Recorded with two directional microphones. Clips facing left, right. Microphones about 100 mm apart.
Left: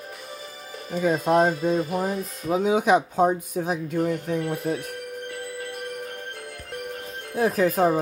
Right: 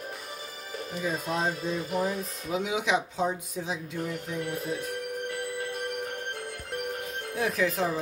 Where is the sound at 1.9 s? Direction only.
40° left (ahead or behind); by 5.0 s 60° left (ahead or behind).